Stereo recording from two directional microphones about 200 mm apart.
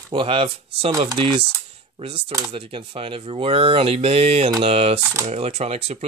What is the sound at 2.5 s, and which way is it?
Speech, 30° right (ahead or behind).